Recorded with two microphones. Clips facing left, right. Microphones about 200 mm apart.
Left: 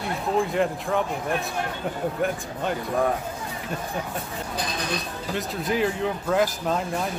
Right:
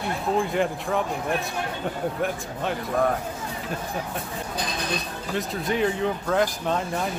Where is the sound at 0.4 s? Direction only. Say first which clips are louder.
Left 3 dB; centre (ahead or behind).